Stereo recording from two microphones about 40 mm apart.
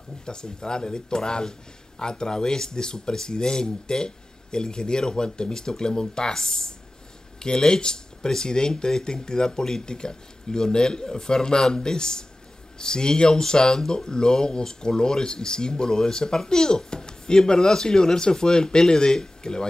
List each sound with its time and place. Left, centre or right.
0.2 s speech: centre